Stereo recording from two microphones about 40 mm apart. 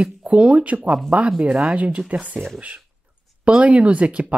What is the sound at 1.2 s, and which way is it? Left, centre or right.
Speech, right.